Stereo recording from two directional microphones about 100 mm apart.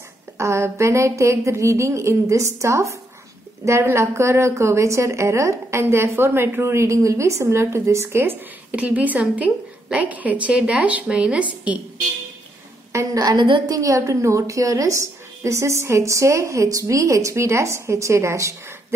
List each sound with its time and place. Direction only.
0.4 s a woman's voice: 30° right (ahead or behind); by 11.4 s 10° right (ahead or behind)
12.9 s a woman's voice: 35° right (ahead or behind)
13.7 s a woman's voice: 35° right (ahead or behind)